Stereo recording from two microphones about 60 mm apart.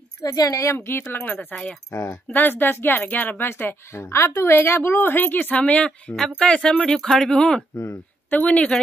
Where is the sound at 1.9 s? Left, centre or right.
Left.